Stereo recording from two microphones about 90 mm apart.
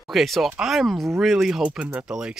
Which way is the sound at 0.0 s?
Centre (ahead or behind).